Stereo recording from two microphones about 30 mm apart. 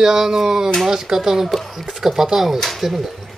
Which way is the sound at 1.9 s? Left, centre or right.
Centre.